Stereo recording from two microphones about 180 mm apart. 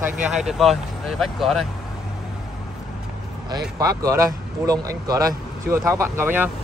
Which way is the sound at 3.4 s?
20° right (ahead or behind).